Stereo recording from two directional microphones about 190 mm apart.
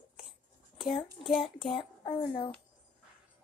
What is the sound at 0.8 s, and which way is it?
A child's voice, centre (ahead or behind).